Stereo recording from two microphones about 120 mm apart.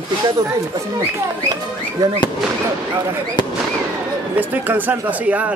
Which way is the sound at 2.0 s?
30° right (ahead or behind).